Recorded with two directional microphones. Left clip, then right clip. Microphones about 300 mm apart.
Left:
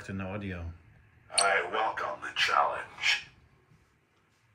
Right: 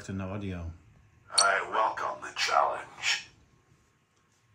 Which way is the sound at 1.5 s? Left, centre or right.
Centre.